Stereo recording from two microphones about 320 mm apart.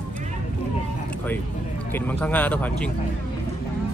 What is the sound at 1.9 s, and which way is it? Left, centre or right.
Speech, centre.